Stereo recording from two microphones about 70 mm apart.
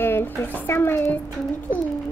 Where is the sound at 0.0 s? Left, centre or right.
Left.